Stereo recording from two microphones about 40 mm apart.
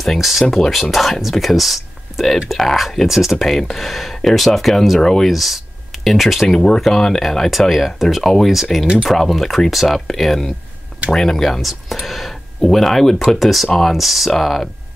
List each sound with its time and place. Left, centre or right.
0.0 s speech: centre
6.5 s speech: centre
11.1 s speech: centre
11.6 s speech: centre